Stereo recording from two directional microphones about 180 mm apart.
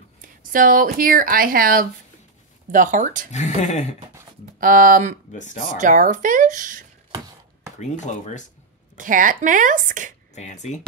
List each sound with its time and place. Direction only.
0.4 s speech: 50° right (ahead or behind)
3.3 s speech: 40° left (ahead or behind)
4.6 s speech: 50° right (ahead or behind)
5.3 s speech: 45° left (ahead or behind)
5.8 s speech: 45° right (ahead or behind)
7.1 s a sound: 20° right (ahead or behind)
7.8 s speech: 40° left (ahead or behind)
8.9 s speech: 45° right (ahead or behind)
10.3 s speech: 40° left (ahead or behind)